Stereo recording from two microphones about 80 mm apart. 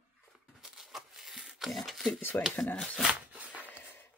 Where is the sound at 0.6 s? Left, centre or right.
Centre.